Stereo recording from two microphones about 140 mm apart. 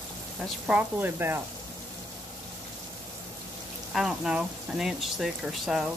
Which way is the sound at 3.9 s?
5° right (ahead or behind).